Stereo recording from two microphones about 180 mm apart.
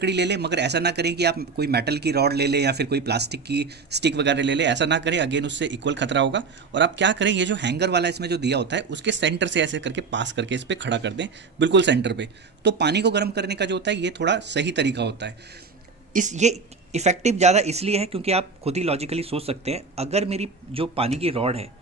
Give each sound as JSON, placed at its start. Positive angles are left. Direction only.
{"t": 0.0, "sound": "speech", "side_deg": -70}
{"t": 16.1, "sound": "speech", "side_deg": -45}